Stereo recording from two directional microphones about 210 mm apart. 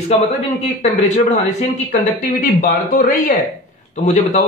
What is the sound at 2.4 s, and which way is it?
A man's voice, 40° left (ahead or behind).